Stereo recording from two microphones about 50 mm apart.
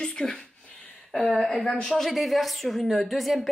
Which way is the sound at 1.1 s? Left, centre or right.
Centre.